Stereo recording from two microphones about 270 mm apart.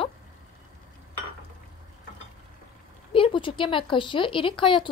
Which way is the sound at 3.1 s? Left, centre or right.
Centre.